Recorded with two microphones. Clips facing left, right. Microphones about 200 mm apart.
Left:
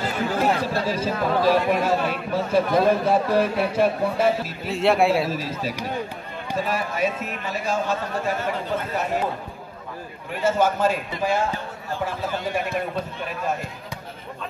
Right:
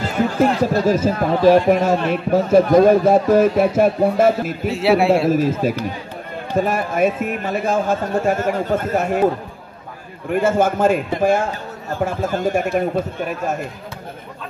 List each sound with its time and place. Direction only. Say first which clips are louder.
0.7 s a man's voice: right 7 dB; 45° right (ahead or behind)
4.6 s a man's voice: right 3 dB; centre (ahead or behind)
5.1 s a man's voice: right 8 dB; 50° right (ahead or behind)
10.3 s a man's voice: right 5 dB; 50° right (ahead or behind)